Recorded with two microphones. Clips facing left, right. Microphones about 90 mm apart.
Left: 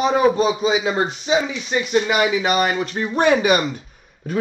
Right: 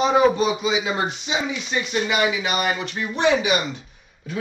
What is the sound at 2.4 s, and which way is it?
Speech, 40° left (ahead or behind).